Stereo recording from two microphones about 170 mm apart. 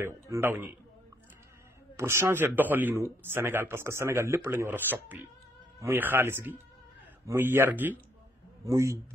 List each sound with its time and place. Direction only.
0.0 s speech: 15° right (ahead or behind)
2.0 s speech: 15° right (ahead or behind)